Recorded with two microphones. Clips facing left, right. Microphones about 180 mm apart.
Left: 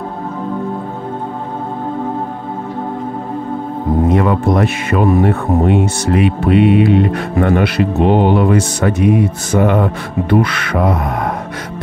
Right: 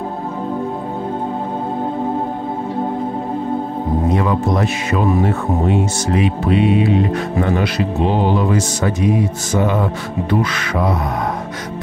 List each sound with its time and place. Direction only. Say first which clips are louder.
4.1 s speech: left 3 dB; 55° left (ahead or behind)